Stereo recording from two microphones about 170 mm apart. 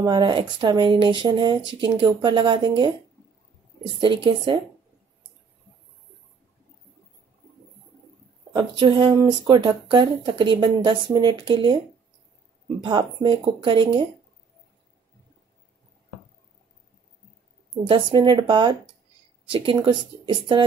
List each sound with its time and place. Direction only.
0.0 s speech: 30° right (ahead or behind)
4.0 s speech: 30° right (ahead or behind)
8.5 s speech: 30° right (ahead or behind)
12.8 s speech: 30° right (ahead or behind)
17.8 s speech: 30° right (ahead or behind)